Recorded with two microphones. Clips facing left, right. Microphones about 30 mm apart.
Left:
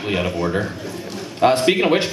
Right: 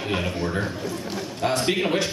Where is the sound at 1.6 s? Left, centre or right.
Left.